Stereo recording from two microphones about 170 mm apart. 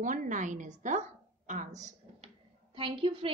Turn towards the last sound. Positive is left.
turn(degrees=-30)  # may be behind; listen again after turning